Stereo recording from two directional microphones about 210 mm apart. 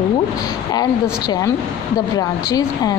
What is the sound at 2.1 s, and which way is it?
Speech, 20° left (ahead or behind).